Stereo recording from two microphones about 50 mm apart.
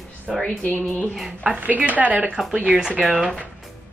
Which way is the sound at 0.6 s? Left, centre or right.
Left.